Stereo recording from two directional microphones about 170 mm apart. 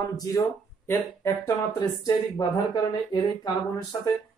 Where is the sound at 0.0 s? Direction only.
20° left (ahead or behind).